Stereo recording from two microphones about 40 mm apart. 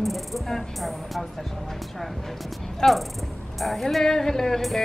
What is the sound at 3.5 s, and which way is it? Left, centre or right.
Music, centre.